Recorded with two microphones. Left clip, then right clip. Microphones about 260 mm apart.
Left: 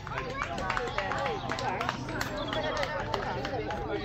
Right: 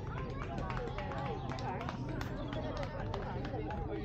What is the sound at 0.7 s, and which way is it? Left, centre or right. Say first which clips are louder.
Run: left 11 dB; left.